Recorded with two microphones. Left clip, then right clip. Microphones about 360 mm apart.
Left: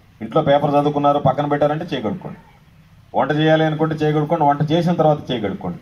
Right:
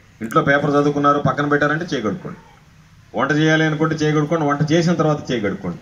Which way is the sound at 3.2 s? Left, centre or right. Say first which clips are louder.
Even; left.